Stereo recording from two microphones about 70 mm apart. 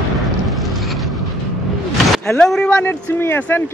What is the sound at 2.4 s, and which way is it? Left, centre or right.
Speech, centre.